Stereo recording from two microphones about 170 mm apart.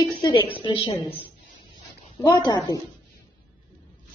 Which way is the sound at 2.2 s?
25° left (ahead or behind).